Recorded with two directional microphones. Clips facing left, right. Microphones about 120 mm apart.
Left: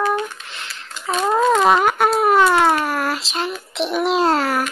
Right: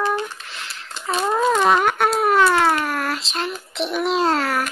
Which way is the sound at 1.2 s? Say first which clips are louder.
Left 3 dB; 20° left (ahead or behind).